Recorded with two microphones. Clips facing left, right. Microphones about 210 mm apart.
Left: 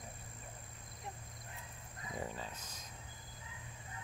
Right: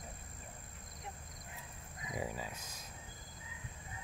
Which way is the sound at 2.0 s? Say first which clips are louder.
Right 2 dB; 10° right (ahead or behind).